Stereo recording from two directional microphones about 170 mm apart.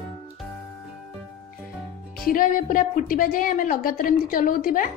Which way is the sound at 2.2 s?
55° left (ahead or behind).